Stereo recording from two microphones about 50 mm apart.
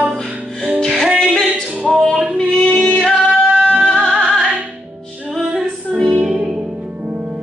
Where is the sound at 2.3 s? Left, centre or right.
Centre.